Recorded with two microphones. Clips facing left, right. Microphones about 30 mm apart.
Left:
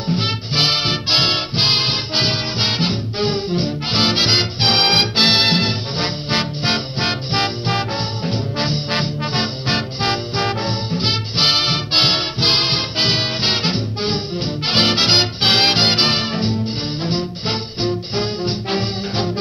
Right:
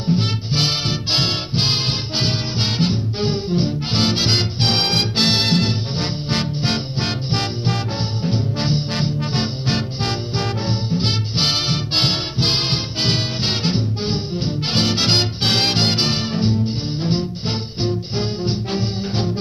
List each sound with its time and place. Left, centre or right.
0.2 s music: left